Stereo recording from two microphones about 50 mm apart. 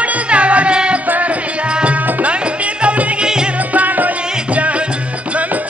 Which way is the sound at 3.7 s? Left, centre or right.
Right.